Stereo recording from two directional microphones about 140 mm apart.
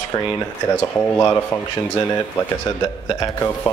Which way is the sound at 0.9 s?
15° left (ahead or behind).